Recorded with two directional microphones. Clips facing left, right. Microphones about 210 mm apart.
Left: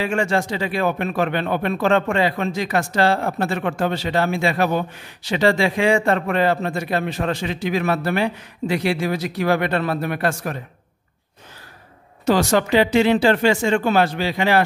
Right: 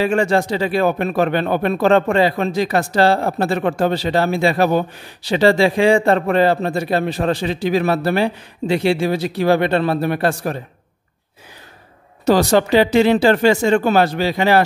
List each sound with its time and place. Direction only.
0.0 s speech: 35° right (ahead or behind)
12.3 s speech: 35° right (ahead or behind)